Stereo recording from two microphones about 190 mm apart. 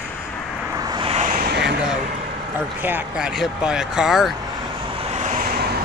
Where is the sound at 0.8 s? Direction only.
25° right (ahead or behind).